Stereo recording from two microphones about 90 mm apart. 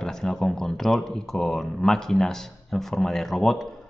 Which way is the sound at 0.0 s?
5° left (ahead or behind).